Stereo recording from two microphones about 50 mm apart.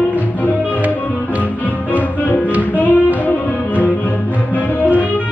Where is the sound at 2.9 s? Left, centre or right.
Right.